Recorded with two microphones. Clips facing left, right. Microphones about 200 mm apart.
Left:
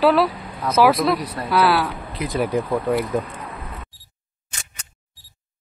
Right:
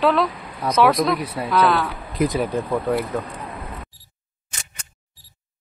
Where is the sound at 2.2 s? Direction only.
50° right (ahead or behind).